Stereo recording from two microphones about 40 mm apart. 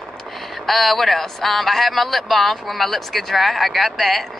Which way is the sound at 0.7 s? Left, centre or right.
Centre.